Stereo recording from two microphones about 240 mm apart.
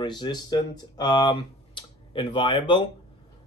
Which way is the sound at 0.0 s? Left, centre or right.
Centre.